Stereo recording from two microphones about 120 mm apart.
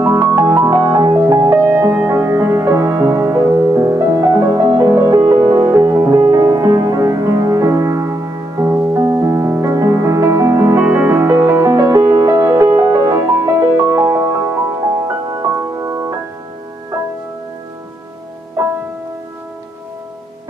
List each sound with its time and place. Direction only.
0.0 s music: 25° right (ahead or behind)